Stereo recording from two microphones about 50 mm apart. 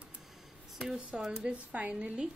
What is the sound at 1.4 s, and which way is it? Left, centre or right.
Speech, right.